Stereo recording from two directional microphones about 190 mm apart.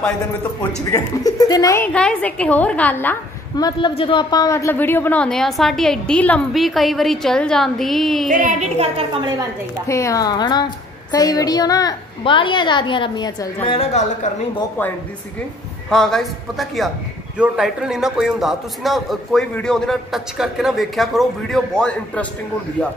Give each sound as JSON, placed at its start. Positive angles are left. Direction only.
{"t": 0.9, "sound": "a woman's voice", "side_deg": 20}
{"t": 2.0, "sound": "a woman's voice", "side_deg": 5}
{"t": 3.5, "sound": "a man's voice", "side_deg": 25}
{"t": 8.3, "sound": "a woman's voice", "side_deg": -45}
{"t": 9.8, "sound": "a woman's voice", "side_deg": 15}
{"t": 13.7, "sound": "a woman's voice", "side_deg": 35}
{"t": 15.9, "sound": "a man's voice", "side_deg": 5}